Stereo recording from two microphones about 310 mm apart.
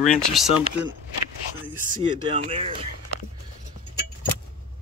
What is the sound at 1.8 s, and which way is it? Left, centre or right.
Speech, right.